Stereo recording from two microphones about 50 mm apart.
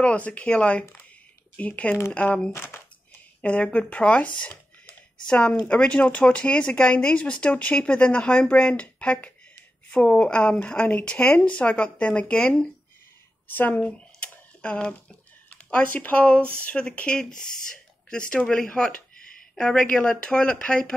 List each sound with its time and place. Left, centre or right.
0.0 s speech: left
2.5 s speech: left
3.3 s speech: left
13.5 s speech: left
17.2 s a woman's voice: centre
19.9 s speech: left